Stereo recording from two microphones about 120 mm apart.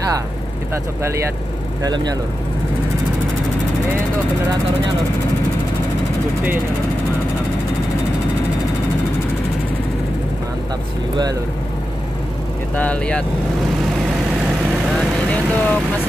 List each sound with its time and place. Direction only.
1.8 s speech: 35° right (ahead or behind)
12.7 s speech: 10° left (ahead or behind)
15.5 s speech: 15° left (ahead or behind)